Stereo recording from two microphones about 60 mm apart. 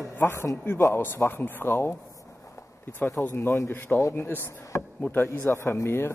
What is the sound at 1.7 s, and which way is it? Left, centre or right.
Speech, left.